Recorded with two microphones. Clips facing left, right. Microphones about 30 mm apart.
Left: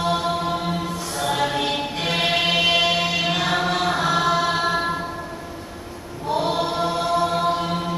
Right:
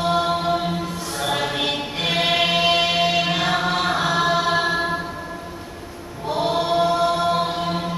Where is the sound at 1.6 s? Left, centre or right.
Centre.